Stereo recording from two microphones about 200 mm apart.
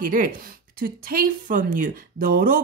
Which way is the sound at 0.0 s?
45° right (ahead or behind).